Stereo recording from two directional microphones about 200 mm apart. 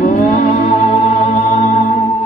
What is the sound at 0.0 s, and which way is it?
Music, 40° left (ahead or behind).